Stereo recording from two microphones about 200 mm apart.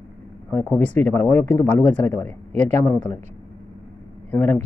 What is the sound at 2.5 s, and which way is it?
Speech, 35° right (ahead or behind).